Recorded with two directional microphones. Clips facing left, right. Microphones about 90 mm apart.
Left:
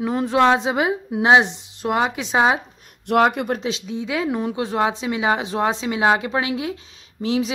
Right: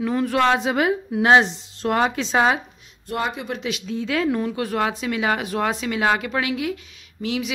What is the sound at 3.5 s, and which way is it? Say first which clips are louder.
Speech: left 3 dB; 30° left (ahead or behind).